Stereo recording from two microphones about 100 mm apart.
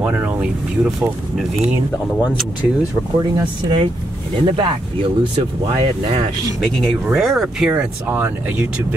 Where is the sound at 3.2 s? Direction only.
50° right (ahead or behind).